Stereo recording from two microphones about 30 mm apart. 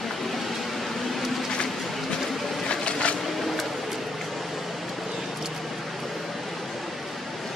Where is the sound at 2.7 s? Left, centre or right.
Left.